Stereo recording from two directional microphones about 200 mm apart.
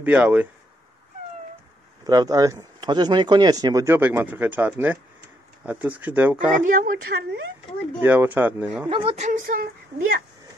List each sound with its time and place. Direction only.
0.0 s speech: 5° right (ahead or behind)
2.0 s speech: 20° right (ahead or behind)
6.6 s speech: 40° right (ahead or behind)
8.0 s speech: 10° right (ahead or behind)
8.8 s a woman's voice: 25° right (ahead or behind); by 9.7 s 40° right (ahead or behind)